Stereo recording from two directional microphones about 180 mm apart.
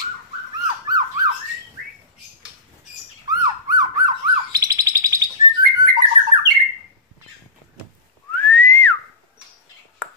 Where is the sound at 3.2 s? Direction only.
20° right (ahead or behind).